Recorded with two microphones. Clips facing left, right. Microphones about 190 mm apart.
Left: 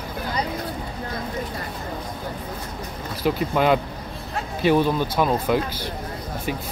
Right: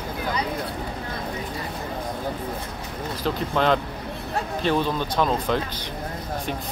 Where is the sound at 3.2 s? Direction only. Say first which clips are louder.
Left 3 dB; 10° left (ahead or behind).